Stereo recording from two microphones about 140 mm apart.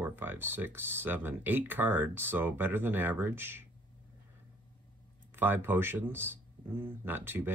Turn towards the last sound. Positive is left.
turn(degrees=-15)  # may be behind; listen again after turning